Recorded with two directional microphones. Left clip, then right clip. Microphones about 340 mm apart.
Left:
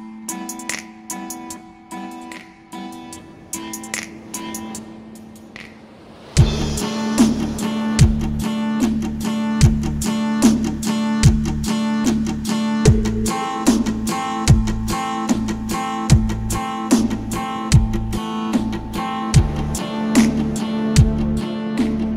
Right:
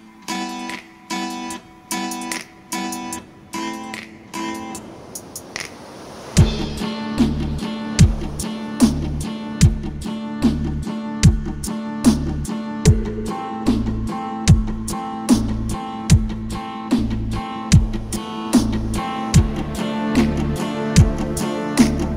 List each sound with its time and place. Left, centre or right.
0.3 s music: right
2.2 s music: right
6.5 s music: centre
7.2 s music: left; by 22.1 s right